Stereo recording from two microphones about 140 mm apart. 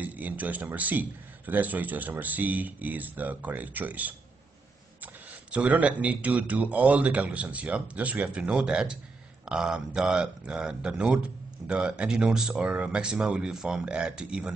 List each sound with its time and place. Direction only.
0.0 s a man's voice: 10° right (ahead or behind)